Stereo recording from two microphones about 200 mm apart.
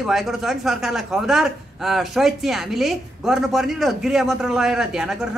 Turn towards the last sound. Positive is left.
turn(degrees=0)  # may be behind; listen again after turning